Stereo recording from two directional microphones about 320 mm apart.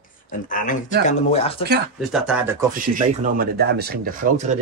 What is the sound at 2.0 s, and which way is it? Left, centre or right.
Speech, centre.